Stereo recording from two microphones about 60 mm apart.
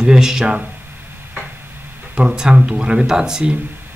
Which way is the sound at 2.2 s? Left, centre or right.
Centre.